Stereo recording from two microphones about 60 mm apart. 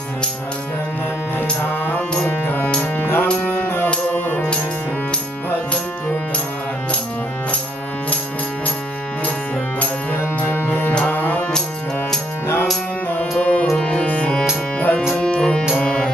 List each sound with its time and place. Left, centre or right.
1.7 s music: left
10.4 s music: left
13.4 s music: left
15.1 s music: centre